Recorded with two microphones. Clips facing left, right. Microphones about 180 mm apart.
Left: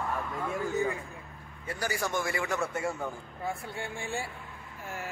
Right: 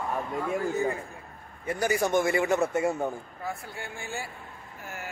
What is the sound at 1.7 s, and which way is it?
A man's voice, 20° right (ahead or behind).